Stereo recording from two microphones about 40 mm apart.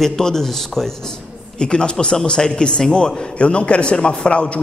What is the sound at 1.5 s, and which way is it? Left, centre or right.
A man's voice, left.